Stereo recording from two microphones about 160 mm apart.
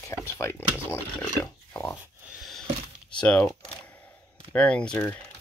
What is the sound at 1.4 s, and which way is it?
Pig, 10° left (ahead or behind).